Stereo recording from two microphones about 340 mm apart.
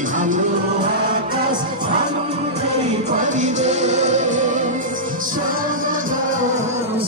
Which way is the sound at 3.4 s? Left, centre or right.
Centre.